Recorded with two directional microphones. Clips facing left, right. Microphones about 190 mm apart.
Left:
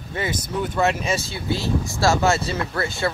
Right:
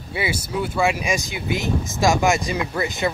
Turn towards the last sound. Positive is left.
turn(degrees=-15)  # may be behind; listen again after turning